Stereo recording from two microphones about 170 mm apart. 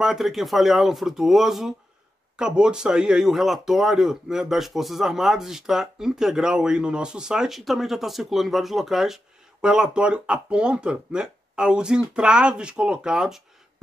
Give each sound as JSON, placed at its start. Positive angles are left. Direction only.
{"t": 0.0, "sound": "speech", "side_deg": 0}